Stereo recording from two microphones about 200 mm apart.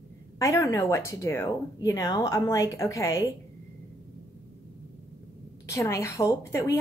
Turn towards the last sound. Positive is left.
turn(degrees=15)  # may be behind; listen again after turning